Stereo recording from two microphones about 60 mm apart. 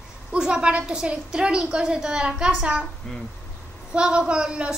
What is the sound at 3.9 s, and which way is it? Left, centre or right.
Speech, centre.